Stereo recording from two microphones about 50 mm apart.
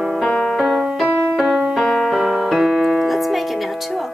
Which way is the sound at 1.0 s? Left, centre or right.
Centre.